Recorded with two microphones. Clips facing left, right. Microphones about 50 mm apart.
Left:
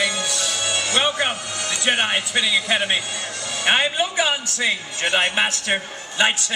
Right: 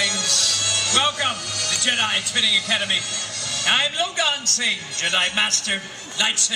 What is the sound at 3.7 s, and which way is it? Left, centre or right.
A man's voice, centre.